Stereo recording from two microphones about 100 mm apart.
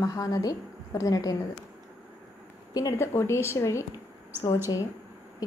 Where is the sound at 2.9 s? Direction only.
25° left (ahead or behind).